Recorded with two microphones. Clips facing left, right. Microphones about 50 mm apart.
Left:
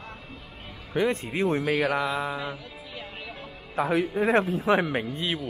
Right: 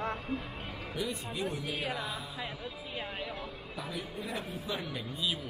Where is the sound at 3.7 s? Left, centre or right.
Left.